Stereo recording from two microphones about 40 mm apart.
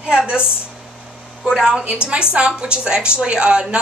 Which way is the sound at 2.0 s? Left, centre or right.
Right.